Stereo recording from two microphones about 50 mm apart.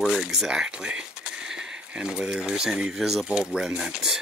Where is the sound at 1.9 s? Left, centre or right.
Centre.